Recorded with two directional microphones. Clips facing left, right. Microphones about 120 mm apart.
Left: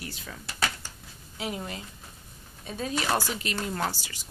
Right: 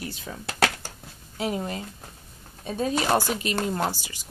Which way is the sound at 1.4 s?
30° right (ahead or behind).